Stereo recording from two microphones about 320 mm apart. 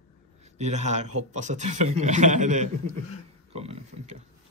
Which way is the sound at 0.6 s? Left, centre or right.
Right.